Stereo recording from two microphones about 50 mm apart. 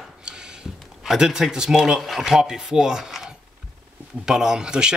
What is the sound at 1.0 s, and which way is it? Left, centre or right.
Speech, centre.